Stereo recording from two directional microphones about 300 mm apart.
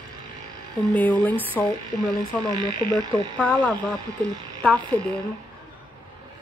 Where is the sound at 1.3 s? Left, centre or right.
Centre.